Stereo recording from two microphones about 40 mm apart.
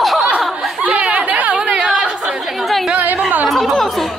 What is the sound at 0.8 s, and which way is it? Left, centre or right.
Speech, right.